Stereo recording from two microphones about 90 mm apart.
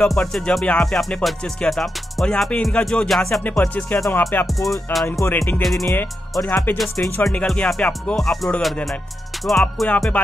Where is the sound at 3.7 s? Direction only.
15° left (ahead or behind).